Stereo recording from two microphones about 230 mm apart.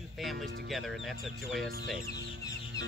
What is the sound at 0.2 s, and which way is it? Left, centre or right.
Speech, centre.